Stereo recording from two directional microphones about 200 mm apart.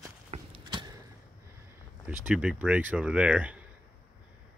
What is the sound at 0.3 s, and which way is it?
Horse, 25° right (ahead or behind).